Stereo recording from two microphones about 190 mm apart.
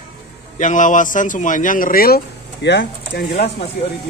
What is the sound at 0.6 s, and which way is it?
A man's voice, 45° left (ahead or behind).